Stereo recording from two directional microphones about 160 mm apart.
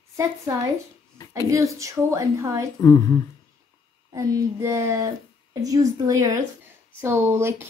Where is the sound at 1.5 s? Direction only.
20° right (ahead or behind).